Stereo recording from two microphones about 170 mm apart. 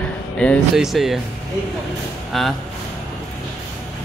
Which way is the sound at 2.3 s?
Centre (ahead or behind).